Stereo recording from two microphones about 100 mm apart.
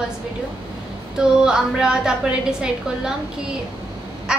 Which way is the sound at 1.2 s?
5° right (ahead or behind).